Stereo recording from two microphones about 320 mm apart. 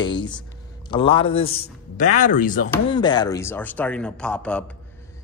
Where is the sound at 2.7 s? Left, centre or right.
Centre.